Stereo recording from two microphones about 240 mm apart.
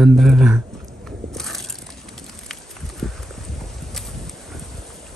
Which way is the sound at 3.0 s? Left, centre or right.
Centre.